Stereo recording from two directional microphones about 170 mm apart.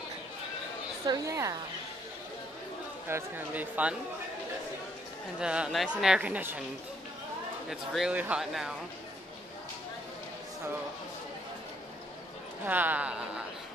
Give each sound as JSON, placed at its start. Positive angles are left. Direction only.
{"t": 1.0, "sound": "a woman's voice", "side_deg": -20}
{"t": 3.1, "sound": "a woman's voice", "side_deg": -15}
{"t": 5.4, "sound": "a woman's voice", "side_deg": -5}
{"t": 7.9, "sound": "speech", "side_deg": -5}
{"t": 12.6, "sound": "a woman's voice", "side_deg": -10}